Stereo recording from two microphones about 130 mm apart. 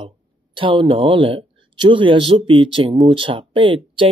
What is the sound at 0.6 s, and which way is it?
Speech, 40° right (ahead or behind).